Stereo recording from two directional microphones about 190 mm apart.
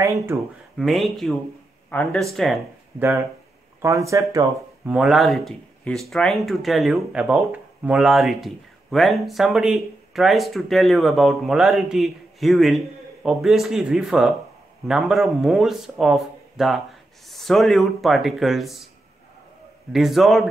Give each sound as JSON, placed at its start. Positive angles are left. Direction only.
{"t": 0.7, "sound": "speech", "side_deg": 0}
{"t": 3.0, "sound": "speech", "side_deg": -15}
{"t": 4.8, "sound": "speech", "side_deg": 0}
{"t": 19.9, "sound": "speech", "side_deg": 0}